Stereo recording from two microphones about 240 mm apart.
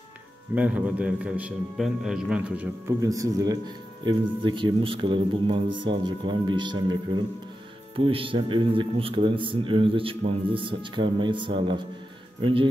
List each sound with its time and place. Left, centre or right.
0.6 s a man's voice: centre; by 12.6 s right